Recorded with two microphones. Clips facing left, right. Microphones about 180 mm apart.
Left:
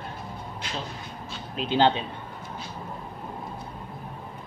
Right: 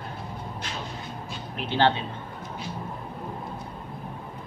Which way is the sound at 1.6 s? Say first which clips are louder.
Left 1 dB; 15° left (ahead or behind).